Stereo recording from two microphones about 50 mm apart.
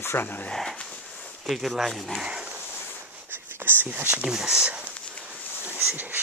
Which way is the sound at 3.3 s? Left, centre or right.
Right.